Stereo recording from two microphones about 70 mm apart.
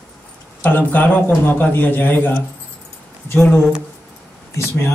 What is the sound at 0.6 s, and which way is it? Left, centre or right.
A man's voice, left.